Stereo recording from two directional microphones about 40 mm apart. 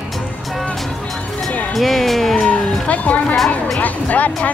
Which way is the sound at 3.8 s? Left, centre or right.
Left.